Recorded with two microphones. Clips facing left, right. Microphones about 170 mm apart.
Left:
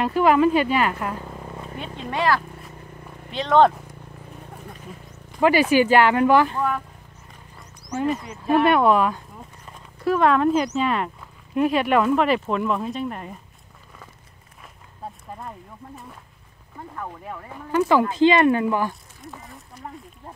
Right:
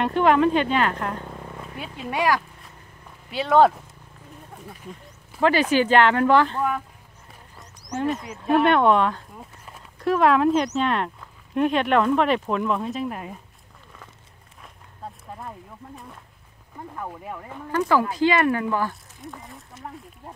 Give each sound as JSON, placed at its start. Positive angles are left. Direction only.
{"t": 0.0, "sound": "speech", "side_deg": 5}
{"t": 1.8, "sound": "speech", "side_deg": -10}
{"t": 5.4, "sound": "speech", "side_deg": 10}
{"t": 7.9, "sound": "speech", "side_deg": 5}
{"t": 16.9, "sound": "speech", "side_deg": -10}
{"t": 17.6, "sound": "speech", "side_deg": 15}
{"t": 19.2, "sound": "speech", "side_deg": 0}